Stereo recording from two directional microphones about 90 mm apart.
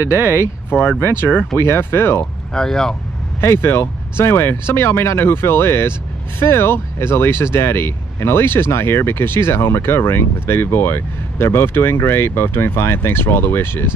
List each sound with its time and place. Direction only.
0.1 s speech: 30° left (ahead or behind)
2.5 s speech: 5° left (ahead or behind)
3.3 s speech: 30° left (ahead or behind)